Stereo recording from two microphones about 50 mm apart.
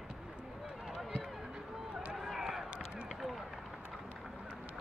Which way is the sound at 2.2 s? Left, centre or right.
Centre.